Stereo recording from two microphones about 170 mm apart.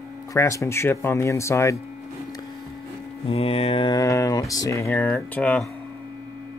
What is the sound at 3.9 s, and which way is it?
Speech, 20° left (ahead or behind).